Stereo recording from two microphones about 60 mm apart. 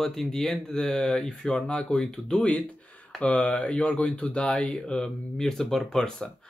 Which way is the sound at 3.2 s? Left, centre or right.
Left.